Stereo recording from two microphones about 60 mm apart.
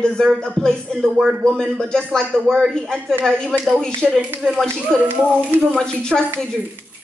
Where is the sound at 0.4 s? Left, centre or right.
Centre.